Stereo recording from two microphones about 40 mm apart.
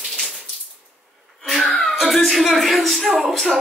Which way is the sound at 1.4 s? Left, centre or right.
Centre.